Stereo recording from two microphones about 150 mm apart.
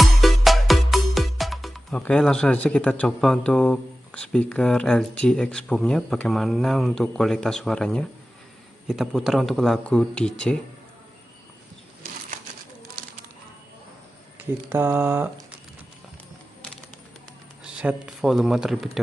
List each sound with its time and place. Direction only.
0.0 s music: centre (ahead or behind)
8.8 s speech: centre (ahead or behind)
14.4 s speech: 15° right (ahead or behind)
17.6 s speech: 5° right (ahead or behind)